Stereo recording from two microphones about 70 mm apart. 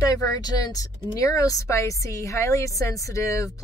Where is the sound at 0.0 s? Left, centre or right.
Left.